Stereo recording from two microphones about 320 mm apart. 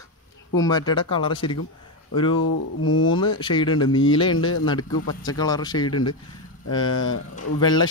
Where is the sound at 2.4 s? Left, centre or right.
Left.